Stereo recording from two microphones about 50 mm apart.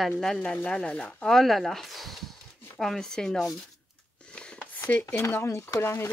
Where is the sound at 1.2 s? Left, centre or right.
Centre.